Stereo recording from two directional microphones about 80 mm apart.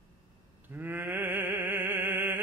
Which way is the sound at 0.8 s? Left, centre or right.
Right.